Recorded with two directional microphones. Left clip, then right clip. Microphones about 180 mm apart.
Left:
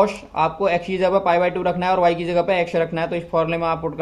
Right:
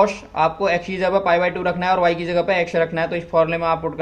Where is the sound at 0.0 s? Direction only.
20° left (ahead or behind).